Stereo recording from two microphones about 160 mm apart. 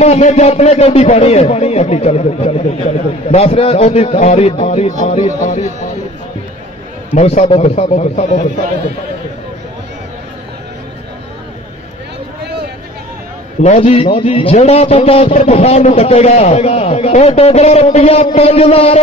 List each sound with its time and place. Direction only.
0.0 s a man's voice: 45° left (ahead or behind)
7.2 s a man's voice: 45° left (ahead or behind)
13.6 s a man's voice: 40° left (ahead or behind)